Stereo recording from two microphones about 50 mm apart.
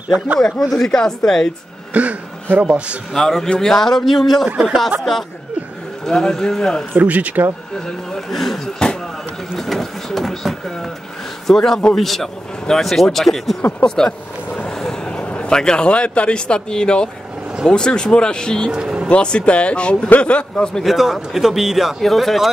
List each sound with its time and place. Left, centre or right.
0.6 s speech: centre
2.0 s a man's voice: right
3.1 s speech: centre
6.0 s speech: centre
6.9 s speech: right
7.7 s speech: centre
9.6 s vehicle: centre
11.4 s speech: centre
13.6 s speech: left
13.8 s vehicle: centre
14.7 s speech: centre
18.7 s speech: centre
19.0 s speech: left
20.8 s speech: centre